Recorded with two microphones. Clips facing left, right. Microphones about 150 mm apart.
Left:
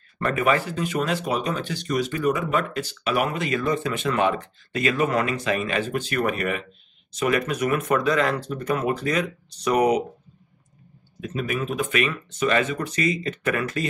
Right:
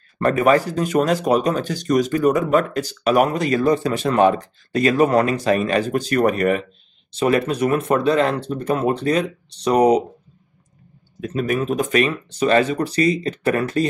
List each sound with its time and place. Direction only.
0.2 s speech: 35° right (ahead or behind)
7.1 s speech: 30° right (ahead or behind)
11.1 s speech: 40° right (ahead or behind)